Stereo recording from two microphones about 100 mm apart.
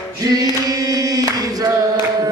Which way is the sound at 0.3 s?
40° right (ahead or behind).